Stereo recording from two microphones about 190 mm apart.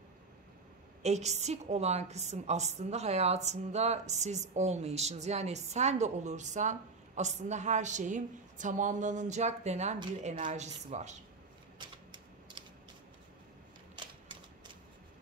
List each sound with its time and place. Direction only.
1.0 s a woman's voice: 35° right (ahead or behind)
11.8 s typewriter: 25° right (ahead or behind)